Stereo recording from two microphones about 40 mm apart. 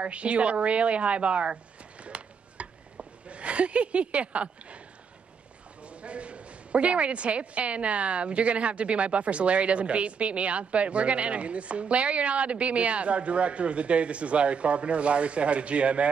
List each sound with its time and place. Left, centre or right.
0.0 s a woman's voice: right
2.0 s a sound: right
5.9 s a woman's voice: right